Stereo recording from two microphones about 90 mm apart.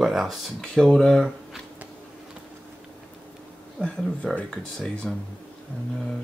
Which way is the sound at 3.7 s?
10° left (ahead or behind).